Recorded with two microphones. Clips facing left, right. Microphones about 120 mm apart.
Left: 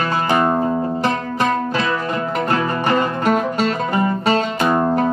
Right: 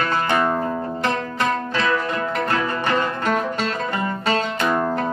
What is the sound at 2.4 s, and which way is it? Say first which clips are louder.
Music: left 3 dB; 15° left (ahead or behind).